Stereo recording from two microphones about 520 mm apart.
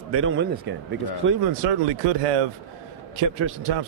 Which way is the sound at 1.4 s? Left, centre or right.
Right.